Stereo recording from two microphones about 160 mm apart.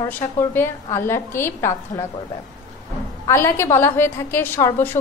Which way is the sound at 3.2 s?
15° left (ahead or behind).